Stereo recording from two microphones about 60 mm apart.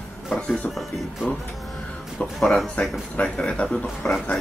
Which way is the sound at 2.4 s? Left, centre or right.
Centre.